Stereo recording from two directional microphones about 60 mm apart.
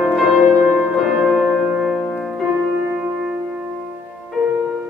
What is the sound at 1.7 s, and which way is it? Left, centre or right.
Music, centre.